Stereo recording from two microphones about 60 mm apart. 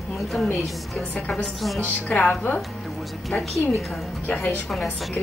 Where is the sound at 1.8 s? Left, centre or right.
Left.